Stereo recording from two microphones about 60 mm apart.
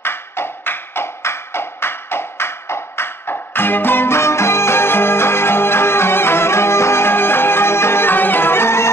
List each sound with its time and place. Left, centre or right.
0.0 s music: left